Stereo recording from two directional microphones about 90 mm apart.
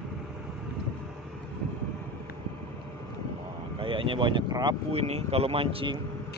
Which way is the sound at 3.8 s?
70° right (ahead or behind).